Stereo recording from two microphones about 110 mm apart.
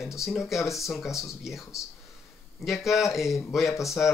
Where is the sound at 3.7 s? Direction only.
30° left (ahead or behind).